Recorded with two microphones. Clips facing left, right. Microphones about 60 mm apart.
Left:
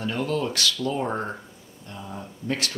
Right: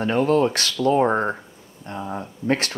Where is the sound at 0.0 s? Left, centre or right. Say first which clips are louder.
Right 8 dB; right.